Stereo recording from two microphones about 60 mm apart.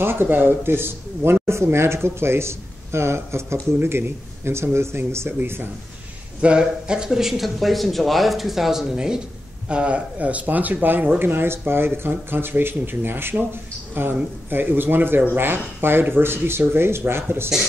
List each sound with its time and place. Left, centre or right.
0.0 s speech: right
6.4 s speech: centre; by 17.5 s right